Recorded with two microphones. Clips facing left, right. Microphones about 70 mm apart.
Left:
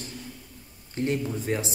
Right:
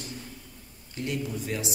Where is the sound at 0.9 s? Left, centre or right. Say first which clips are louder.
Left 4 dB; left.